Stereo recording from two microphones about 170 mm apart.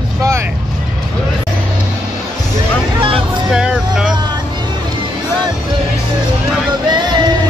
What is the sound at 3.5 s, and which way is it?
Speech, 5° right (ahead or behind).